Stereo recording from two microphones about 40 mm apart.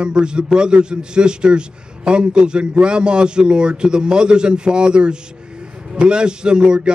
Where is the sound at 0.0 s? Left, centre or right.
Right.